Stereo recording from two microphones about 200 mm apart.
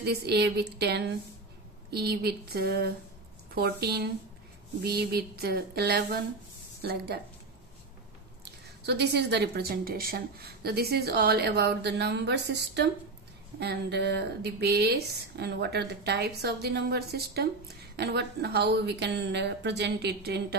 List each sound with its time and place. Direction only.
0.0 s a woman's voice: 55° right (ahead or behind)
8.8 s a woman's voice: 55° right (ahead or behind)